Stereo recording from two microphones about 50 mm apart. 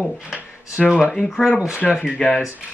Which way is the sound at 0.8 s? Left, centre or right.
Centre.